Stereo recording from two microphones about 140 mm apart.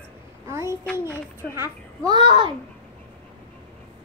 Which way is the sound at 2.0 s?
35° right (ahead or behind).